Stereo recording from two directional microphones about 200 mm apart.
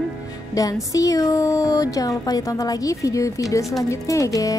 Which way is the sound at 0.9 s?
15° left (ahead or behind).